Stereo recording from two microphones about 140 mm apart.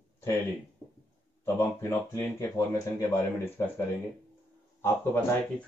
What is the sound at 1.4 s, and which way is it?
Speech, 20° left (ahead or behind).